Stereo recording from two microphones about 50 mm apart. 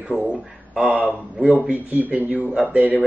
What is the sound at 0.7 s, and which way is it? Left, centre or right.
Speech, right.